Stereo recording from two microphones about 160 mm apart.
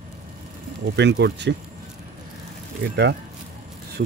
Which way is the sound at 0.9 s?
90° right.